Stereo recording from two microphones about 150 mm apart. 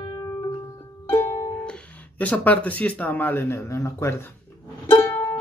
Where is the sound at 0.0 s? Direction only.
30° left (ahead or behind).